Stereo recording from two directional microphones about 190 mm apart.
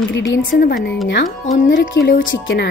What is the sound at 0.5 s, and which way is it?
A woman's voice, 55° left (ahead or behind).